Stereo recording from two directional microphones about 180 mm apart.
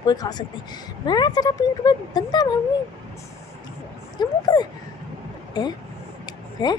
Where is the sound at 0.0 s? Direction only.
20° left (ahead or behind).